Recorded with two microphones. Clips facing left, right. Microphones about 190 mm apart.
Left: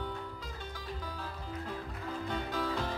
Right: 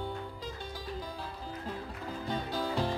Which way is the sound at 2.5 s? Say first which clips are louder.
Right 3 dB; 35° right (ahead or behind).